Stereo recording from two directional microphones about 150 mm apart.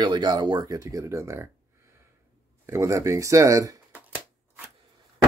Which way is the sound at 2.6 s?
20° right (ahead or behind).